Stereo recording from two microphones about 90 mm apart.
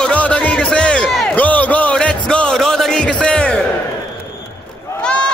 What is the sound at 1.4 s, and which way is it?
Music, 20° left (ahead or behind).